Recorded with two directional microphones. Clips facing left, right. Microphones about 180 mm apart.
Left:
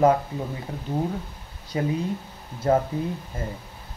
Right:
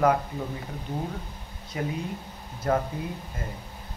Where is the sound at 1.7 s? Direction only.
30° left (ahead or behind).